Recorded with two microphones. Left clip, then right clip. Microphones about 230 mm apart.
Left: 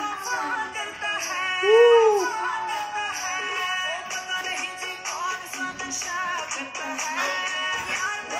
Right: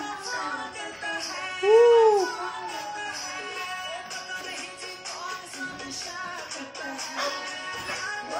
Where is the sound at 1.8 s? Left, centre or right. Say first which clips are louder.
Left 2 dB; centre.